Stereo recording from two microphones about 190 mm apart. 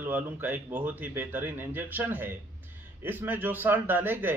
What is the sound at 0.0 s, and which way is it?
A man's voice, 10° right (ahead or behind).